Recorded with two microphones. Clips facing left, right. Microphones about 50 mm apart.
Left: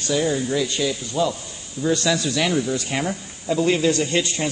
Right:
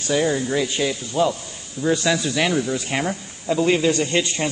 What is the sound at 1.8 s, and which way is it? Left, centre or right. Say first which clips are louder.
Speech: right 1 dB; centre.